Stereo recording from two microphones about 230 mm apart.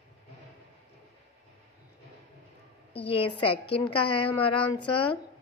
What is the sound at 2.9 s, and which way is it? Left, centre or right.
A woman's voice, left.